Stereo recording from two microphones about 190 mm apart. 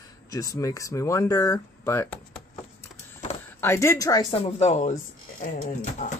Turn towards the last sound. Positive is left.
turn(degrees=40)  # may be behind; listen again after turning